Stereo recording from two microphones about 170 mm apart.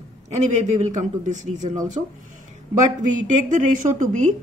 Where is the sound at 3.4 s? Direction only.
45° right (ahead or behind).